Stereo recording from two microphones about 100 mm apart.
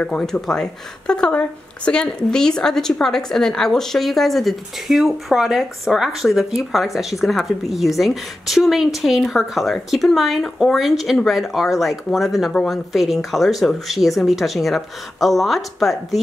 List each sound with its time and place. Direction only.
0.0 s a woman's voice: 10° left (ahead or behind)